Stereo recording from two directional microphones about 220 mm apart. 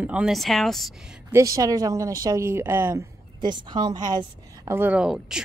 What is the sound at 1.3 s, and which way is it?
A woman's voice, 15° right (ahead or behind).